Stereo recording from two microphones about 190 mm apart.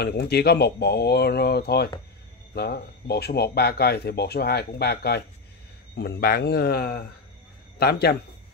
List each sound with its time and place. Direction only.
0.0 s speech: 60° left (ahead or behind)